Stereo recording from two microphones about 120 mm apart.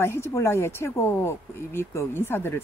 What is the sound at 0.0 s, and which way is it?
Speech, 20° left (ahead or behind).